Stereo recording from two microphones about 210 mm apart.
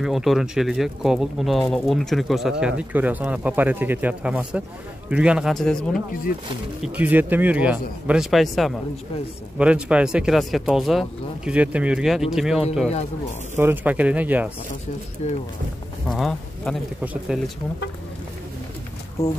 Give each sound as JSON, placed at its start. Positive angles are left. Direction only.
{"t": 0.0, "sound": "speech", "side_deg": 0}
{"t": 15.2, "sound": "speech", "side_deg": 30}
{"t": 16.1, "sound": "speech", "side_deg": 0}
{"t": 19.2, "sound": "speech", "side_deg": 15}